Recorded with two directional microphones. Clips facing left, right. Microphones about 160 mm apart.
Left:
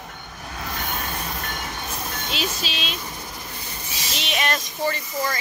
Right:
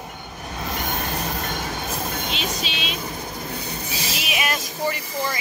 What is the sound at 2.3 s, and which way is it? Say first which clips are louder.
Music: even; centre (ahead or behind).